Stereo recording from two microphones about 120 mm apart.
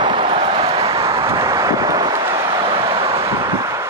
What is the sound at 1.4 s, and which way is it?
Vehicle, 30° right (ahead or behind).